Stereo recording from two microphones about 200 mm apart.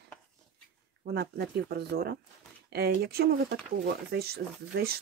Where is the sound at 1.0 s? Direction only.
55° right (ahead or behind).